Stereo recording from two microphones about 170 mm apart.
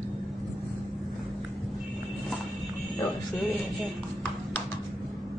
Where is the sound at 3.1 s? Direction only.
Centre (ahead or behind).